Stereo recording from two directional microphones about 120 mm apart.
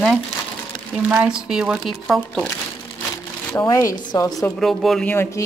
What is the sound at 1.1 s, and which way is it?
Speech, 10° right (ahead or behind).